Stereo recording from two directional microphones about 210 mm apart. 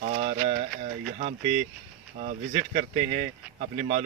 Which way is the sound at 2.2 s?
35° right (ahead or behind).